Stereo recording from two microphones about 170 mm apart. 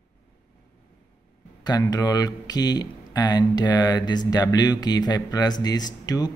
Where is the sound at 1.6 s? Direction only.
25° left (ahead or behind).